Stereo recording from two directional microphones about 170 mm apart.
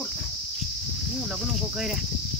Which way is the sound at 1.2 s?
5° right (ahead or behind).